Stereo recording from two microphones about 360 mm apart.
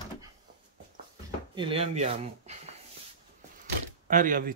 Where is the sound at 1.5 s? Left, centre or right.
Centre.